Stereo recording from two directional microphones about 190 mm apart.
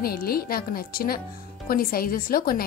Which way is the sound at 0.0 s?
50° left (ahead or behind).